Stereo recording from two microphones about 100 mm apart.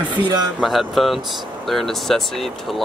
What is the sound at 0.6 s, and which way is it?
Speech, centre (ahead or behind).